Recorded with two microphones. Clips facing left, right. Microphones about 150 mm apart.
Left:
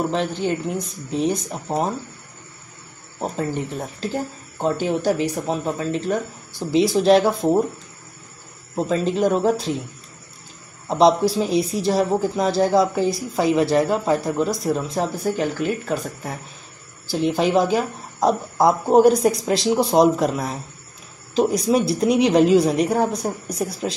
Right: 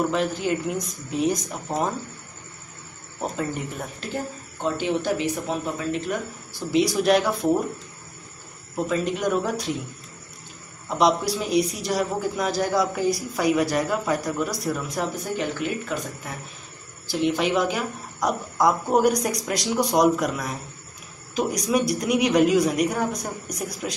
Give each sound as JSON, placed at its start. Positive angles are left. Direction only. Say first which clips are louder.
{"t": 0.1, "sound": "speech", "louder": "left 1 dB", "side_deg": 25}
{"t": 3.2, "sound": "speech", "louder": "left 3 dB", "side_deg": 30}
{"t": 8.7, "sound": "speech", "louder": "left 4 dB", "side_deg": 30}
{"t": 10.9, "sound": "speech", "louder": "left 5 dB", "side_deg": 30}
{"t": 15.3, "sound": "speech", "louder": "left 4 dB", "side_deg": 40}